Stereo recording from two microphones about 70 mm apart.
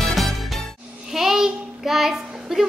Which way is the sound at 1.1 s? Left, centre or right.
Centre.